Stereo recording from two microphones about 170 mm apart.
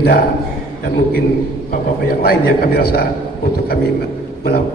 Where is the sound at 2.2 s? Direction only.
65° left (ahead or behind).